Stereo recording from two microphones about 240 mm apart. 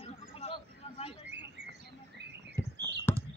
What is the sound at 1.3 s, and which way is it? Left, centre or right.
Bird, right.